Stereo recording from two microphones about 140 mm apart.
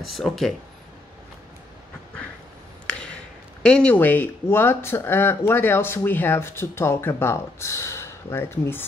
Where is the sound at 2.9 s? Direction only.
5° left (ahead or behind).